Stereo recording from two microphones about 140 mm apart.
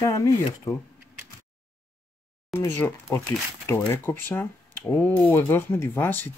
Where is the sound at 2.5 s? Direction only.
15° left (ahead or behind).